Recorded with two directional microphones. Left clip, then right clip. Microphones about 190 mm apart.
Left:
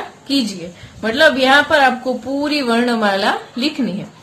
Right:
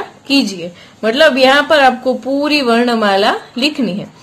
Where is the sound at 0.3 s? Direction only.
35° right (ahead or behind).